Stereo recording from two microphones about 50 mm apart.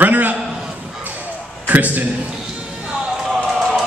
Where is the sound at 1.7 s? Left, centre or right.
Right.